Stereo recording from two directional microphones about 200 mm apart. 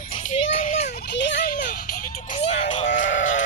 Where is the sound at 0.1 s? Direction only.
40° left (ahead or behind).